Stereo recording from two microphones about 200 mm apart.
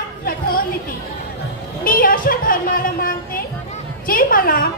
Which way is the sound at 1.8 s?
45° left (ahead or behind).